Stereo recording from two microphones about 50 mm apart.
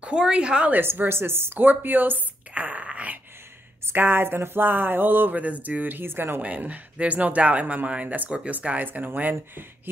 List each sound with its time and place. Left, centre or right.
0.0 s a woman's voice: centre
0.9 s speech: right
2.5 s a sound: right
3.9 s speech: right
6.4 s speech: right